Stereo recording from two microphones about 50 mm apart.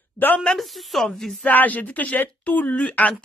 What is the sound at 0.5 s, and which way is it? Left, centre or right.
Speech, centre.